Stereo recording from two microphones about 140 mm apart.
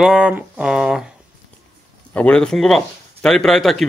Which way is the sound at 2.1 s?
10° left (ahead or behind).